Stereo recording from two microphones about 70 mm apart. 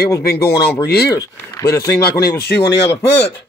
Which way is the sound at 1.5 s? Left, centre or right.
Left.